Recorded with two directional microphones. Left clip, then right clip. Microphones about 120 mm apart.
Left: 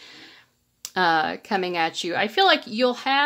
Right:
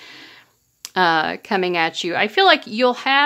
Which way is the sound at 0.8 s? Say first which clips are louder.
Right 4 dB; 25° right (ahead or behind).